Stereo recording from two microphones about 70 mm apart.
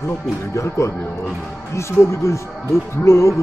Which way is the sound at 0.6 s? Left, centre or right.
Left.